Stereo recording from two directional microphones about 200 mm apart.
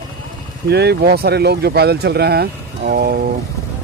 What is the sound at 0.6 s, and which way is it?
Speech, 55° right (ahead or behind).